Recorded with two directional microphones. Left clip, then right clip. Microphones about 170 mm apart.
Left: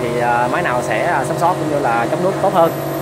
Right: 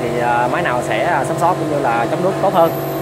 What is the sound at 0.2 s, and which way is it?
Speech, 5° left (ahead or behind).